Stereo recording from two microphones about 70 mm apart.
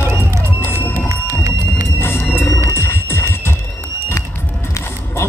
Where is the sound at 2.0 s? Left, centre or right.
Left.